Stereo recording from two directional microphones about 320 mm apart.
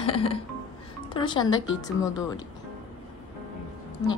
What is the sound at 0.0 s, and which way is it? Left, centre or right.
Speech, centre.